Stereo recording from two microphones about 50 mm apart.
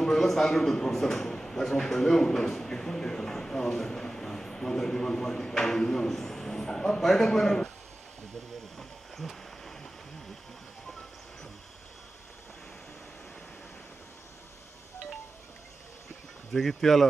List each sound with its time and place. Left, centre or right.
0.0 s a man's voice: centre
8.7 s a sound: centre
16.5 s speech: centre